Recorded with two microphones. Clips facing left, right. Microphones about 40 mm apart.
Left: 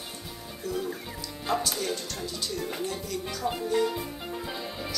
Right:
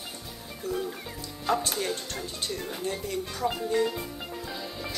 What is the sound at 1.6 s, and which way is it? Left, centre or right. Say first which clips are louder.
Speech: even; right.